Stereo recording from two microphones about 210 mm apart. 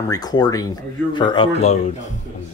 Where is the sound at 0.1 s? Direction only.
20° left (ahead or behind).